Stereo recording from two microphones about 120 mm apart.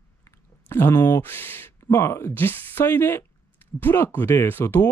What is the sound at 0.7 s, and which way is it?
Speech, 20° left (ahead or behind).